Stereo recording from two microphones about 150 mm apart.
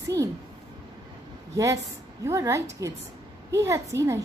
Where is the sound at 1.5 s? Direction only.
20° right (ahead or behind).